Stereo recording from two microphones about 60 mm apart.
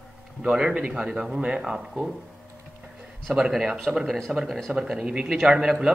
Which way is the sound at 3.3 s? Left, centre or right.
Centre.